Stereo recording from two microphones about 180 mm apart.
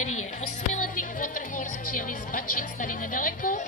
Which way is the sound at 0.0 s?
40° left (ahead or behind).